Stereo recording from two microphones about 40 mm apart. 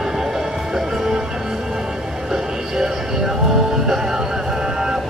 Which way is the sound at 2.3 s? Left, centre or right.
Centre.